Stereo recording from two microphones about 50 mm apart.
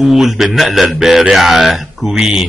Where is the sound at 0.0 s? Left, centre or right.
Centre.